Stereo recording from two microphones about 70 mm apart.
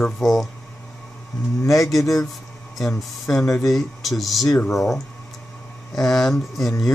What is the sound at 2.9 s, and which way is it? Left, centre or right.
Speech, centre.